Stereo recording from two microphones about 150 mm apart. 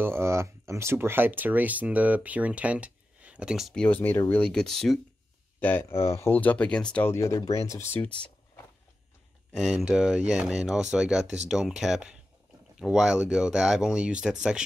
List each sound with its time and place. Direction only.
0.0 s speech: 15° right (ahead or behind); by 5.0 s centre (ahead or behind)
5.6 s speech: 10° left (ahead or behind)
7.1 s speech: 20° left (ahead or behind)
9.6 s speech: centre (ahead or behind)